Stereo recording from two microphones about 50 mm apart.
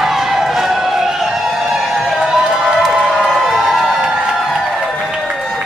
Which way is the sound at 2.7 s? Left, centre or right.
Centre.